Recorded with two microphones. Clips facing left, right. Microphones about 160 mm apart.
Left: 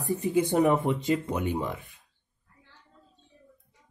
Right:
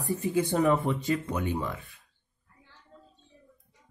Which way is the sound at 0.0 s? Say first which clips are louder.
Left 2 dB; 20° left (ahead or behind).